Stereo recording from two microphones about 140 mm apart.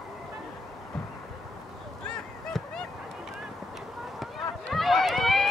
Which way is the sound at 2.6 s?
Centre (ahead or behind).